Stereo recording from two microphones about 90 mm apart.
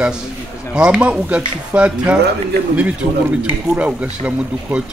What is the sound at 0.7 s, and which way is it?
Speech, 10° right (ahead or behind).